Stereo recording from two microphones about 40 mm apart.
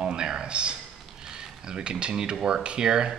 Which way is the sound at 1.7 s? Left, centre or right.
Right.